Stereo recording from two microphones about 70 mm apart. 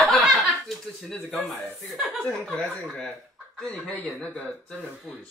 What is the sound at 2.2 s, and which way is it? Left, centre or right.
Speech, centre.